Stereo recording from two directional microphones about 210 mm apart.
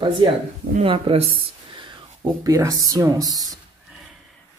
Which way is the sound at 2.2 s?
15° right (ahead or behind).